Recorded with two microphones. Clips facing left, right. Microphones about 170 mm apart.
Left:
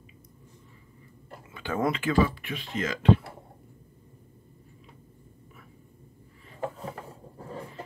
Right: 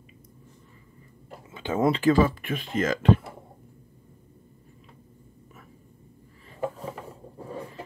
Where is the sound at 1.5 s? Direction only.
20° right (ahead or behind).